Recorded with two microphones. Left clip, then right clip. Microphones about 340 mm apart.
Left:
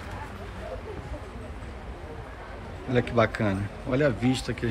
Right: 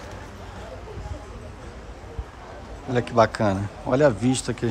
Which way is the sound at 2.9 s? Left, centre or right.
Centre.